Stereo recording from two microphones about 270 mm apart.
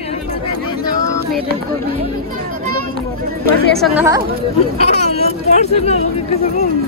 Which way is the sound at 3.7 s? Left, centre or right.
Centre.